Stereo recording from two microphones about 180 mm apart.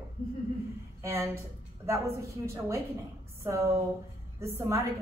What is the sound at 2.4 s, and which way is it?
A man's voice, 15° right (ahead or behind).